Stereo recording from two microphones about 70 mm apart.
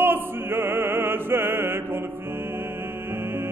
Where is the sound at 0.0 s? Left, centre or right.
Right.